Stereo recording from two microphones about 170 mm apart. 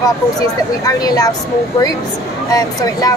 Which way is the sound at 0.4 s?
20° left (ahead or behind).